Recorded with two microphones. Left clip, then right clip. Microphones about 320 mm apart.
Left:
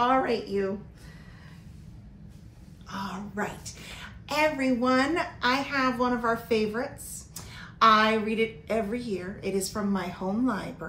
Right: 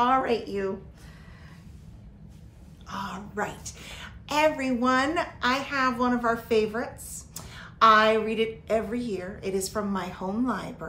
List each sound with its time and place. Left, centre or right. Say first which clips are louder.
0.0 s a woman's voice: right 1 dB; centre
2.9 s a woman's voice: right 1 dB; centre